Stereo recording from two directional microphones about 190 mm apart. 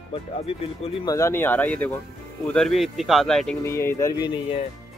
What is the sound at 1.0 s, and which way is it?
Speech, 15° left (ahead or behind).